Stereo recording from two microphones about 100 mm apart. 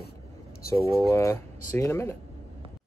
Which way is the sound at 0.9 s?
30° left (ahead or behind).